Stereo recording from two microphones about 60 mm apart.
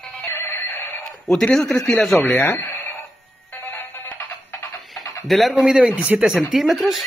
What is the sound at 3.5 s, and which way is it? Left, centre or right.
Music, left.